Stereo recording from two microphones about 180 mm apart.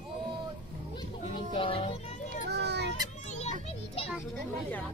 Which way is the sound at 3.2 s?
40° left (ahead or behind).